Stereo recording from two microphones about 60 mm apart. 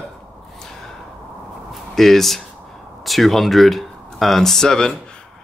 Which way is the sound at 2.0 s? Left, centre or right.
Centre.